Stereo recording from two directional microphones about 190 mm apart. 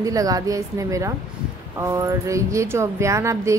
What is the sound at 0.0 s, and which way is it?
Speech, 20° right (ahead or behind).